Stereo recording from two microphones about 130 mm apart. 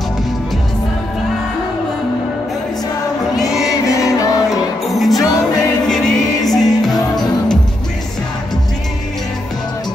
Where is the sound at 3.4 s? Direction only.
5° right (ahead or behind).